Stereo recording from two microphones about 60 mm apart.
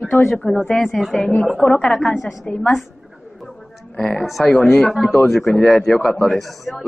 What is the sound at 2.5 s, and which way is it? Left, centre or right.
Speech, centre.